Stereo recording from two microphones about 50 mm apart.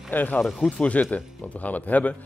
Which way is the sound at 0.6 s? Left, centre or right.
Left.